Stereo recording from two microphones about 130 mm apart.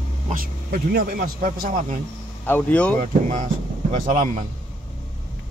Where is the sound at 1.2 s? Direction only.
90° right.